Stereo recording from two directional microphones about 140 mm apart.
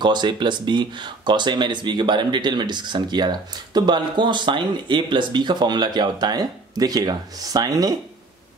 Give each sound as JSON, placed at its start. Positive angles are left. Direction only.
{"t": 0.0, "sound": "speech", "side_deg": -30}